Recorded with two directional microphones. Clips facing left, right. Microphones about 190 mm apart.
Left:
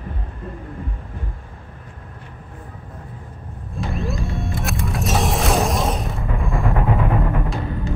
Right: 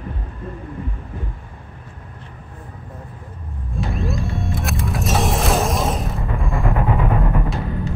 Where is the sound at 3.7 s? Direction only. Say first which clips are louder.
Right 1 dB; centre (ahead or behind).